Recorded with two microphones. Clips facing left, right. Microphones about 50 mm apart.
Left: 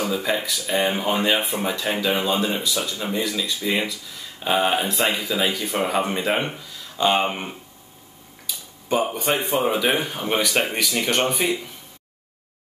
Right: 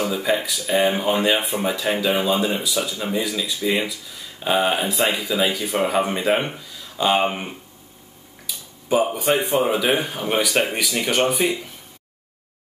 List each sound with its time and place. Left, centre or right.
0.0 s speech: centre